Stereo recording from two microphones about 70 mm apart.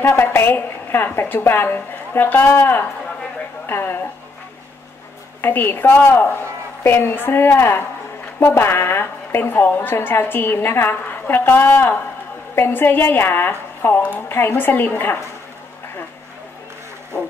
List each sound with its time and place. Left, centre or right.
0.0 s a woman's voice: left
5.4 s a woman's voice: left
14.3 s a woman's voice: left